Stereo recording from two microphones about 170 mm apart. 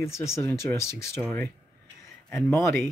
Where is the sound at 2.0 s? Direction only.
15° left (ahead or behind).